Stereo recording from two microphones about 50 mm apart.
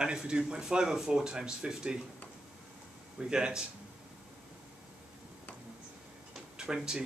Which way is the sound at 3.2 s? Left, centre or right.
Centre.